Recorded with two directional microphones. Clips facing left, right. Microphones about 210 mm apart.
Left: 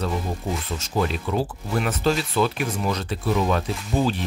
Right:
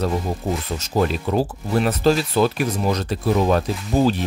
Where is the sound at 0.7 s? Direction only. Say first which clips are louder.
Right 4 dB; 40° right (ahead or behind).